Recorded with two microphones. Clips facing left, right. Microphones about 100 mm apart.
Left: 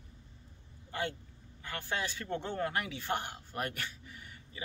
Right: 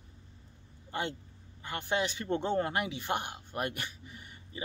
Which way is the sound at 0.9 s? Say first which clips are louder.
Right 1 dB; 20° right (ahead or behind).